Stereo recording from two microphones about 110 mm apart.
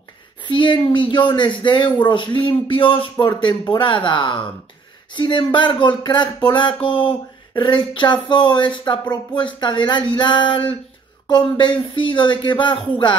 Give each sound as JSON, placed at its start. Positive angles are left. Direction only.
{"t": 0.4, "sound": "speech", "side_deg": 45}